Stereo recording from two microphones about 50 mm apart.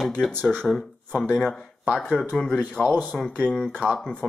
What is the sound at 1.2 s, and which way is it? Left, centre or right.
Speech, centre.